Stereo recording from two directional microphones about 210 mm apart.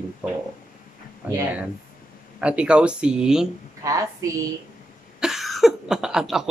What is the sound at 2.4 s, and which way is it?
Speech, 5° right (ahead or behind).